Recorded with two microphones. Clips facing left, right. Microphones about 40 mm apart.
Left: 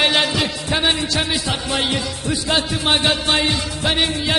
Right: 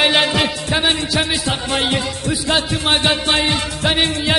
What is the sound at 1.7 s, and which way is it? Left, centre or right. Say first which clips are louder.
Speech: right 3 dB; right.